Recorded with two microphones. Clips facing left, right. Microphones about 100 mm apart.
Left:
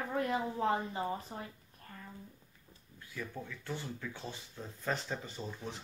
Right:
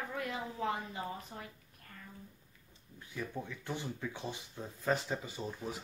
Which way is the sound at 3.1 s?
15° right (ahead or behind).